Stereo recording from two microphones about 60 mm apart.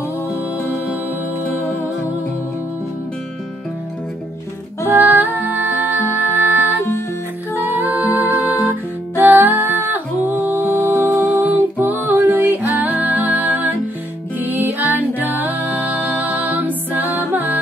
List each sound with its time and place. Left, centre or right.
4.8 s music: right
5.9 s music: left
7.7 s music: right